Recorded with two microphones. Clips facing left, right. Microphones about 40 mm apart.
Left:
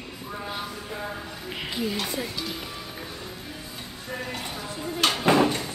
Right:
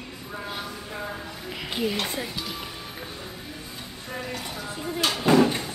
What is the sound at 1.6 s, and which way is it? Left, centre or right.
Speech, right.